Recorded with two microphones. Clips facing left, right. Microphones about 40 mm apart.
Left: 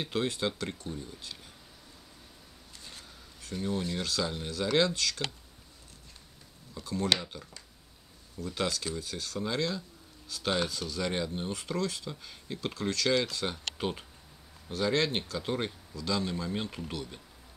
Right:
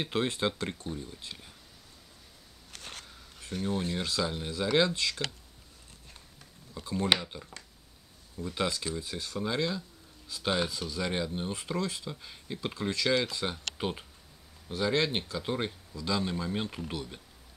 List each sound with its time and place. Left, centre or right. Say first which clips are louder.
0.0 s speech: right 1 dB; right
2.7 s a sound: right 5 dB; right
3.6 s speech: right 1 dB; right
4.2 s speech: right 1 dB; centre
6.8 s speech: right 1 dB; centre
8.5 s speech: right 1 dB; centre